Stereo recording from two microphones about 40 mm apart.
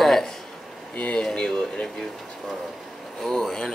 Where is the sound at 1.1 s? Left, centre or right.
Centre.